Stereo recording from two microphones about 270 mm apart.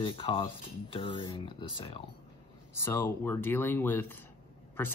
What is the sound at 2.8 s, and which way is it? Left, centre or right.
Speech, centre.